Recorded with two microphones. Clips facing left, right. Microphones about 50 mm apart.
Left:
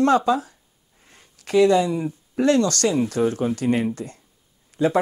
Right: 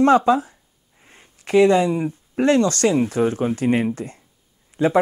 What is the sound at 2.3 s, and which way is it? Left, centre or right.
Speech, right.